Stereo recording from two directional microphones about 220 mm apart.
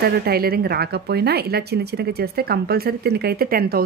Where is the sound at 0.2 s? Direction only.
45° right (ahead or behind).